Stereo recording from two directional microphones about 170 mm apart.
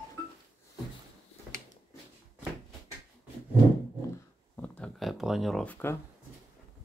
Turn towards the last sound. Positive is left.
turn(degrees=10)  # may be behind; listen again after turning